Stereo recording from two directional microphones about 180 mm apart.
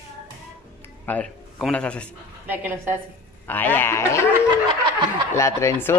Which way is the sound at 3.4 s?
10° left (ahead or behind).